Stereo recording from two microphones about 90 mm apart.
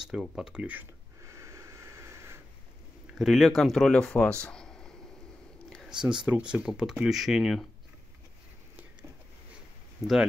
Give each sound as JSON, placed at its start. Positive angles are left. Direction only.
{"t": 0.4, "sound": "speech", "side_deg": -10}
{"t": 1.2, "sound": "a sound", "side_deg": -35}
{"t": 3.2, "sound": "speech", "side_deg": 0}
{"t": 5.9, "sound": "speech", "side_deg": -10}
{"t": 10.0, "sound": "speech", "side_deg": -5}